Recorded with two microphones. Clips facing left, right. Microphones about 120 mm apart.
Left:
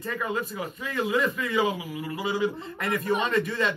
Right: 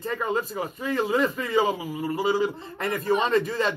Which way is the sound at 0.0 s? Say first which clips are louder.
Right 3 dB; 30° right (ahead or behind).